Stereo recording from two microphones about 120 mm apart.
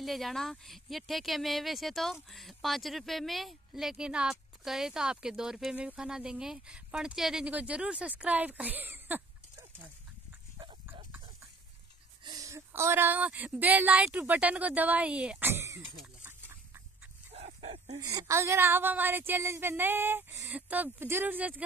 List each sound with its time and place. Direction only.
0.0 s a woman's voice: centre (ahead or behind); by 9.2 s 15° right (ahead or behind)
12.3 s speech: 30° right (ahead or behind); by 15.5 s 10° right (ahead or behind)
15.5 s a sound: 25° right (ahead or behind)
17.3 s dog: 60° right (ahead or behind)
17.9 s speech: 30° right (ahead or behind); by 21.6 s 10° right (ahead or behind)